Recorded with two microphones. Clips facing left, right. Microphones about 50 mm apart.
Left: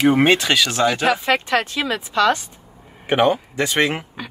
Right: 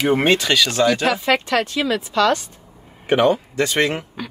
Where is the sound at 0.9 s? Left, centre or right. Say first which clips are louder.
Even; left.